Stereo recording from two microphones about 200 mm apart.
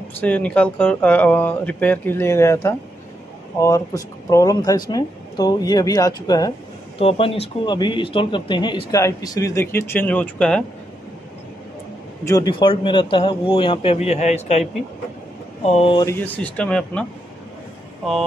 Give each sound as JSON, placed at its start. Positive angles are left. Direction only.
{"t": 0.2, "sound": "speech", "side_deg": 5}
{"t": 12.3, "sound": "speech", "side_deg": 20}
{"t": 15.6, "sound": "speech", "side_deg": 30}